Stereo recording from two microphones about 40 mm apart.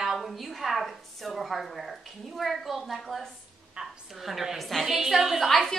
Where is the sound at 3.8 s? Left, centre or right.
Right.